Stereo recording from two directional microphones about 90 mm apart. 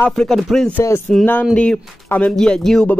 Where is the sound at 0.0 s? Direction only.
10° left (ahead or behind).